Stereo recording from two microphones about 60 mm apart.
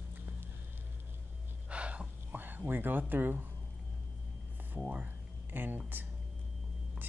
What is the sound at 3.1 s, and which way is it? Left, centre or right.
Speech, right.